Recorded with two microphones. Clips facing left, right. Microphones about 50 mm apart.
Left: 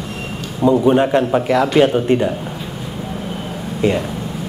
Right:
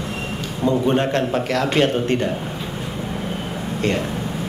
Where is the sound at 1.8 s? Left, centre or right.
Centre.